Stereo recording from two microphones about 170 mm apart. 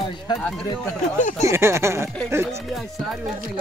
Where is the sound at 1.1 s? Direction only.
45° left (ahead or behind).